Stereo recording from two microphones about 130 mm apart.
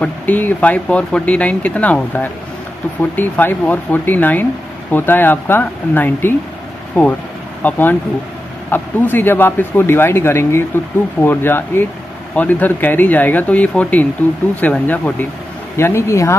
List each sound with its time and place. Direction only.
0.0 s speech: 10° left (ahead or behind)